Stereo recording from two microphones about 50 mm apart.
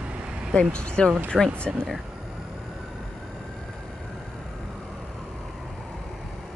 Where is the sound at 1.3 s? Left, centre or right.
Centre.